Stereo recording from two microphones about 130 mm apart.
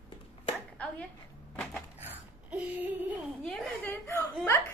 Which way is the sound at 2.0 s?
10° right (ahead or behind).